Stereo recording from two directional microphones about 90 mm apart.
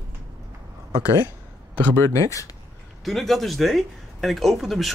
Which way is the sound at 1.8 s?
25° left (ahead or behind).